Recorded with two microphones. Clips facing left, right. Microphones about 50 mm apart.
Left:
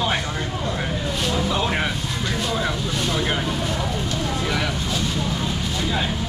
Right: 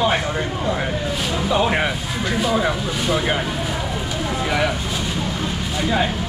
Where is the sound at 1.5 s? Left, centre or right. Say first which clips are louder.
Right 4 dB; centre.